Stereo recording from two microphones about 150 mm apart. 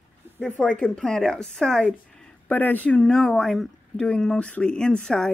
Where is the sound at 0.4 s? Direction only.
5° left (ahead or behind).